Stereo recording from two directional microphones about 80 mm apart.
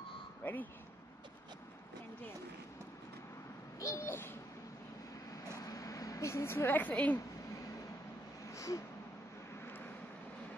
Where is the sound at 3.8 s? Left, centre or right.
Left.